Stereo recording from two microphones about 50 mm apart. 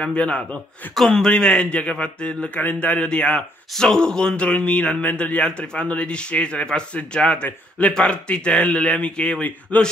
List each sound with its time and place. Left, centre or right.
0.0 s speech: left
0.9 s speech: centre
9.7 s a man's voice: left